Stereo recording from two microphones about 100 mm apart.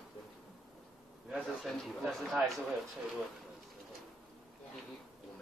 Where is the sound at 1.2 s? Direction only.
Centre (ahead or behind).